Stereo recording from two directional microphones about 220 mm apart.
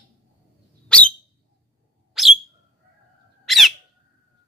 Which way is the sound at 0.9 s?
5° left (ahead or behind).